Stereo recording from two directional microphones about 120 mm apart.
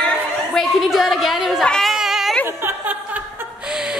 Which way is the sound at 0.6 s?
Centre (ahead or behind).